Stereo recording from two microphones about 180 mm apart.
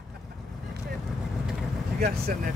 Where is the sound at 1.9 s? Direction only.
55° right (ahead or behind).